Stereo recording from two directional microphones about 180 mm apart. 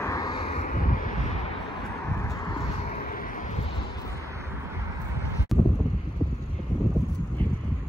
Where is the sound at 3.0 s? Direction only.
50° left (ahead or behind).